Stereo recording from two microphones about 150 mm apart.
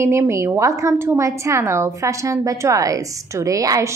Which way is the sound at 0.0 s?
20° right (ahead or behind).